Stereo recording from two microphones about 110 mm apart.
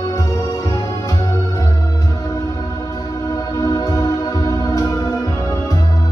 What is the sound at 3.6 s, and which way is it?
Music, 30° left (ahead or behind).